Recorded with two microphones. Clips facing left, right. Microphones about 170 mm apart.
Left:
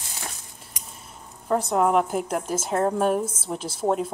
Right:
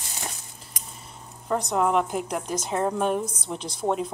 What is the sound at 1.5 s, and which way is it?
A woman's voice, 5° left (ahead or behind).